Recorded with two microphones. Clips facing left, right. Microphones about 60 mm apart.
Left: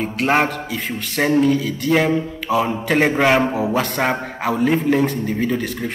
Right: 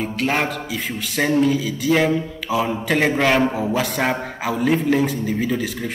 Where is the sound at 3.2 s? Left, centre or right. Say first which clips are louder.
Left 2 dB; centre.